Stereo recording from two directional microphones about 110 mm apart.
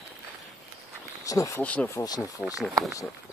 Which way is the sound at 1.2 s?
30° left (ahead or behind).